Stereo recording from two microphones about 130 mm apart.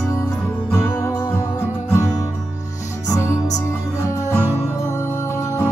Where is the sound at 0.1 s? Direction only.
20° left (ahead or behind).